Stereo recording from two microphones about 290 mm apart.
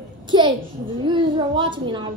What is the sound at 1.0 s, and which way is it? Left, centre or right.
A child's voice, centre.